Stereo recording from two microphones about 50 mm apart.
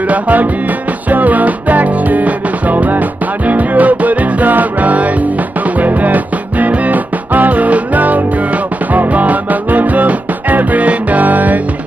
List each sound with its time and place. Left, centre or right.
0.1 s music: right